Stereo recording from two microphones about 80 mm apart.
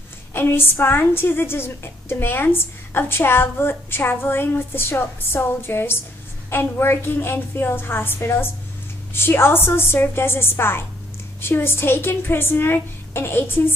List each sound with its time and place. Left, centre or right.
0.3 s a woman's voice: left